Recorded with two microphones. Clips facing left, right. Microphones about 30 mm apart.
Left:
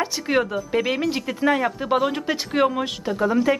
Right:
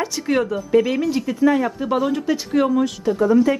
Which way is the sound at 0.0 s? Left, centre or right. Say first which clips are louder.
Right 1 dB; centre.